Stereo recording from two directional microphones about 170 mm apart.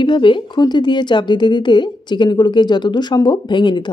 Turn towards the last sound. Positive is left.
turn(degrees=25)  # may be behind; listen again after turning